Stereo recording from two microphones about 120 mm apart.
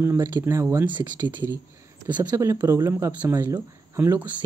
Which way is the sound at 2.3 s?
25° right (ahead or behind).